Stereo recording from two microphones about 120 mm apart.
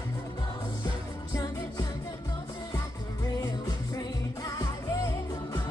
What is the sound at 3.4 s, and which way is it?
Music, 30° left (ahead or behind).